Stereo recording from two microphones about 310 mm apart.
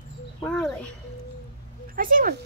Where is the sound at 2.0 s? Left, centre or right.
Right.